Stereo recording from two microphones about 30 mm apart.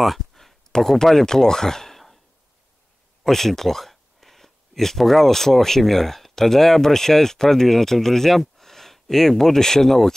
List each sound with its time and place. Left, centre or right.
0.0 s a sound: centre
0.9 s speech: centre
3.3 s speech: centre